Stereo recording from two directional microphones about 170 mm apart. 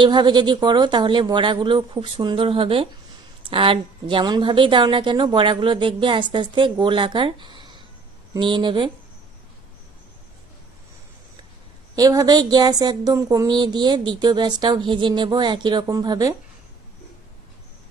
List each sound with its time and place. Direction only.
0.0 s speech: 25° right (ahead or behind)
11.9 s speech: 20° right (ahead or behind)